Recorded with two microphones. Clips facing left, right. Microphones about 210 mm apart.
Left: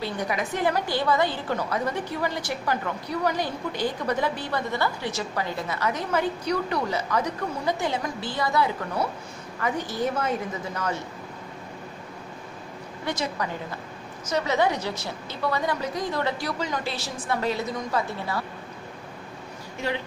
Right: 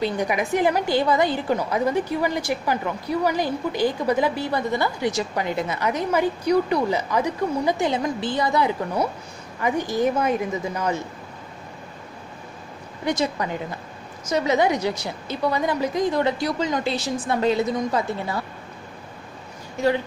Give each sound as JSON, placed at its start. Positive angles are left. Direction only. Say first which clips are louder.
{"t": 0.0, "sound": "a woman's voice", "louder": "right 5 dB", "side_deg": -15}
{"t": 14.3, "sound": "a woman's voice", "louder": "right 4 dB", "side_deg": -15}